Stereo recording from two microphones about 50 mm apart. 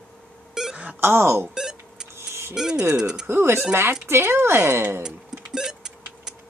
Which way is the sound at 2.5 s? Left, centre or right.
Centre.